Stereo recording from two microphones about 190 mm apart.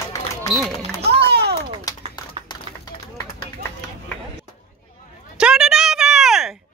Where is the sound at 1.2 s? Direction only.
60° right (ahead or behind).